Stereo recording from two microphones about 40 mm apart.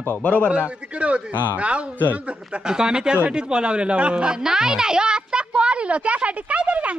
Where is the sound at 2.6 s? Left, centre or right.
Centre.